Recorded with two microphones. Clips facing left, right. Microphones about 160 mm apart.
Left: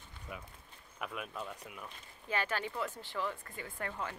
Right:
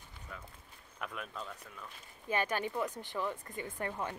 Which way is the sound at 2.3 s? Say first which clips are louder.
Right 2 dB; 15° right (ahead or behind).